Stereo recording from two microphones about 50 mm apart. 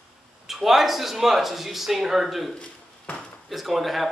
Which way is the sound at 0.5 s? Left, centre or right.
Centre.